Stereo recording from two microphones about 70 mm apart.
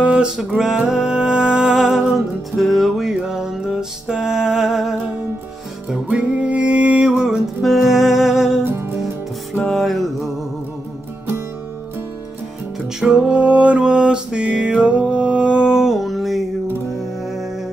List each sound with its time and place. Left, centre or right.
0.0 s music: centre
6.0 s music: centre
8.6 s music: right
9.6 s music: centre
13.0 s music: centre